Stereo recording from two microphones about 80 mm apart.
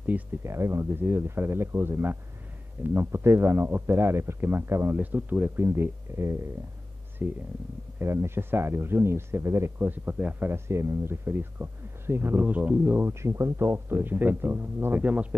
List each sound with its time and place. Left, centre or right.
0.4 s speech: right
4.9 s speech: right
5.6 s speech: right
7.2 s speech: right
10.5 s speech: right